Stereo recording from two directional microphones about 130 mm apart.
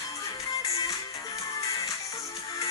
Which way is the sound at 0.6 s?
25° left (ahead or behind).